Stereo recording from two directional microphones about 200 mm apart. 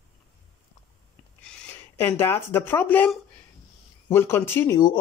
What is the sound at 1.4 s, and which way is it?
Speech, 10° left (ahead or behind).